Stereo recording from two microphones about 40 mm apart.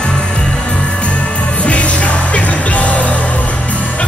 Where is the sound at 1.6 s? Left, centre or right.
Left.